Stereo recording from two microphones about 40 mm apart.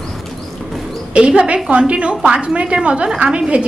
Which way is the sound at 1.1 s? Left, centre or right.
Right.